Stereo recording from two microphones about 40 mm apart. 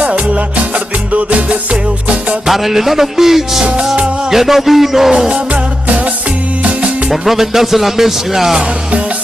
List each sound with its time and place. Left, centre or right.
0.0 s music: right
2.4 s speech: centre
3.8 s music: right
4.3 s speech: centre
5.3 s music: right
7.1 s speech: centre